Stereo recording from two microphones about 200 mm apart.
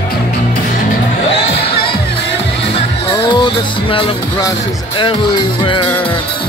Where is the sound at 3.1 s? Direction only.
25° left (ahead or behind).